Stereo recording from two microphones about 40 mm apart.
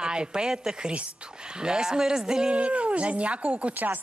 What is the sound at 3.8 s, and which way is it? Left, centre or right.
Speech, right.